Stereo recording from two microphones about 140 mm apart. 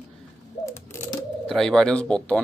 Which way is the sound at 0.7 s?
20° left (ahead or behind).